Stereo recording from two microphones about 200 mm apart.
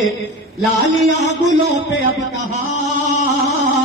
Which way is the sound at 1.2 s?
35° right (ahead or behind).